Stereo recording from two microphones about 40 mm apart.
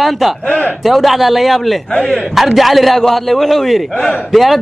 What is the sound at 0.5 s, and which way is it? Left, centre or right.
Speech, left.